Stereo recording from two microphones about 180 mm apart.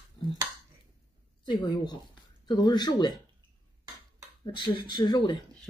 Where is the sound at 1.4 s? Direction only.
25° left (ahead or behind).